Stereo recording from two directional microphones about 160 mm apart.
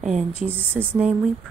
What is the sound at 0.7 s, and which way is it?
Speech, 10° right (ahead or behind).